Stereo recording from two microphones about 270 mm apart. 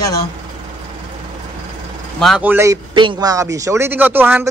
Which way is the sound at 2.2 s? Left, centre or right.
Centre.